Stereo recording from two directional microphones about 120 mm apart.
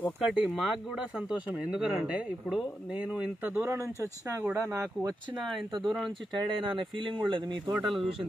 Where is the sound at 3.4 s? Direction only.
15° right (ahead or behind).